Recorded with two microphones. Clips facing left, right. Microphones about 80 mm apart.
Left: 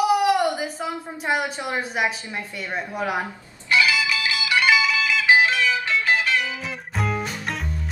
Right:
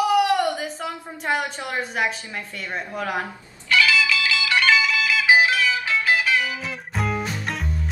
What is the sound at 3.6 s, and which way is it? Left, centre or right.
Music, left.